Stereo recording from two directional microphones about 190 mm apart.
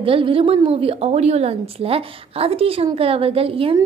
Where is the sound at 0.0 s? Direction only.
30° right (ahead or behind).